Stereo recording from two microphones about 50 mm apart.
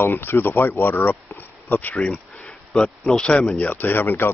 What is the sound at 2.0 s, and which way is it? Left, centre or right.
Speech, centre.